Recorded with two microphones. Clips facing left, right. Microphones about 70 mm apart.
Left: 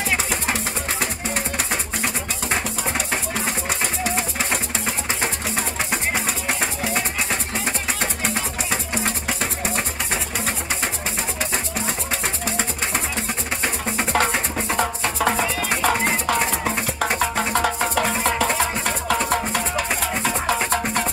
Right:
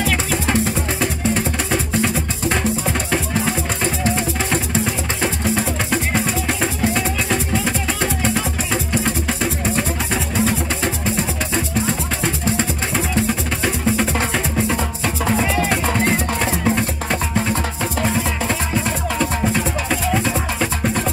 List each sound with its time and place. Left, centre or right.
0.0 s music: centre
3.8 s music: centre
5.6 s music: centre
16.3 s music: centre
17.6 s music: left
20.2 s music: left